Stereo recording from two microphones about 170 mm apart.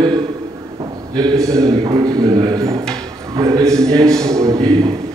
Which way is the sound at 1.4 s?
20° right (ahead or behind).